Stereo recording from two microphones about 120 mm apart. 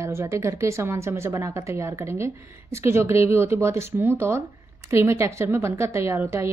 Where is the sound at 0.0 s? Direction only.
20° right (ahead or behind).